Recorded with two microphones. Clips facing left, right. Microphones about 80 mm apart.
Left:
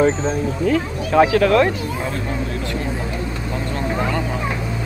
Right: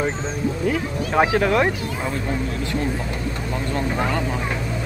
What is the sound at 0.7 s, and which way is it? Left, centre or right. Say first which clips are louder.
Speech: left 6 dB; centre.